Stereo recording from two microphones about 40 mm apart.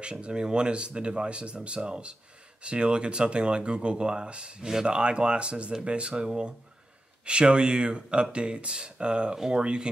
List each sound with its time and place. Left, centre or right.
0.0 s speech: right